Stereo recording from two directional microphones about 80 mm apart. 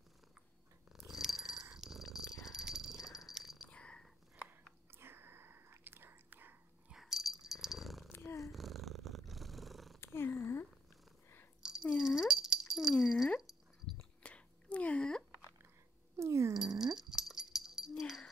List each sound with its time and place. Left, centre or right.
0.9 s purr: centre
1.8 s dog: centre
3.6 s a sound: centre
4.9 s whispering: right
6.9 s purr: centre
8.1 s purr: left
8.4 s purr: centre
9.9 s purr: left
11.9 s dog: centre
14.2 s a sound: centre
16.2 s a sound: right
16.8 s dog: centre